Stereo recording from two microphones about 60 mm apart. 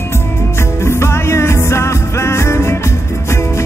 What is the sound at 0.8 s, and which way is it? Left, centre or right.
Music, left.